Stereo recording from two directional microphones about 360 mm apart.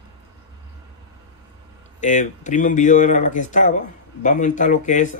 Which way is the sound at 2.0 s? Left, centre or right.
Left.